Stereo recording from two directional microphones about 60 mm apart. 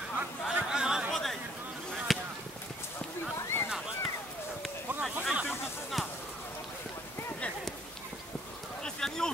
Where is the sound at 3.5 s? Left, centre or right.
Left.